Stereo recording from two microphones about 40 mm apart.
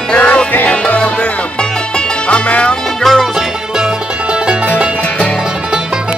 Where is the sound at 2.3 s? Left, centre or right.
Left.